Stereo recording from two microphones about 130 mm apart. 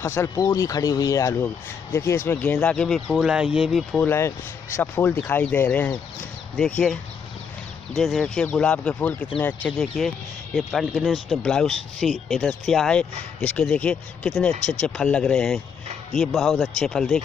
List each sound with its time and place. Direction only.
0.0 s speech: 20° left (ahead or behind)
3.2 s speech: 5° right (ahead or behind)
4.7 s speech: 15° left (ahead or behind)